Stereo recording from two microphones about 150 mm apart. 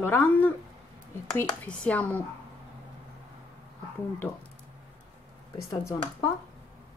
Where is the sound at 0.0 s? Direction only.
15° left (ahead or behind).